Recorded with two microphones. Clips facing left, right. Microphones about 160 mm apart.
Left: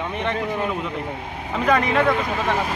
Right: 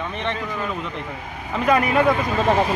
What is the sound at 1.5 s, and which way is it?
Speech, 5° right (ahead or behind).